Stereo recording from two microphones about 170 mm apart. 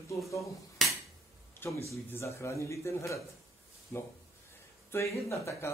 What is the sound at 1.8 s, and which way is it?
Speech, 15° left (ahead or behind).